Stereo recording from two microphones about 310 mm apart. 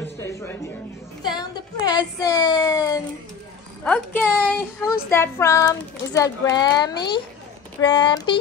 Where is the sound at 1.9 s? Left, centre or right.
Centre.